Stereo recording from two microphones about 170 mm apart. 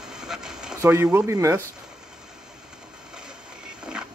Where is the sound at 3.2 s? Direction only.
5° right (ahead or behind).